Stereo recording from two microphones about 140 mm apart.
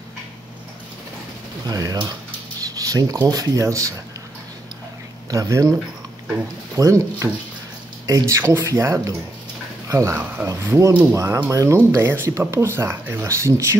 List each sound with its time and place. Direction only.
1.7 s speech: 25° right (ahead or behind)
5.3 s speech: 25° right (ahead or behind)